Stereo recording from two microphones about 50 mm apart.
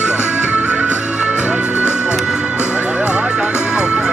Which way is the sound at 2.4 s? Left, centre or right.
Right.